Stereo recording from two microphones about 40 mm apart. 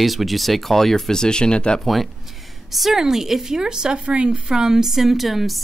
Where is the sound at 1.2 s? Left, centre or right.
Left.